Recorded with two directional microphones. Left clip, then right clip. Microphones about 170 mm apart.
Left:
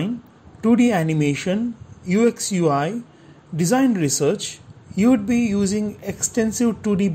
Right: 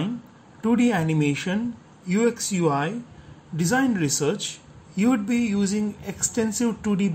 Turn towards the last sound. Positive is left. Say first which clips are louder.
# left 4 dB
turn(degrees=30)  # may be behind; listen again after turning